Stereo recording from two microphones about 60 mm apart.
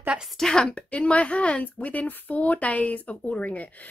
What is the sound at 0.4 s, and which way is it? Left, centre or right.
A woman's voice, centre.